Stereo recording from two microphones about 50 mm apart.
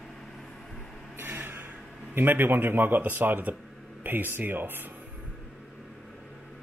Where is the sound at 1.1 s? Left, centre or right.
Right.